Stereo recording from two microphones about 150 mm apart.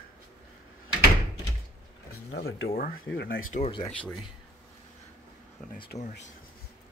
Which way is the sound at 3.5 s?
90° left.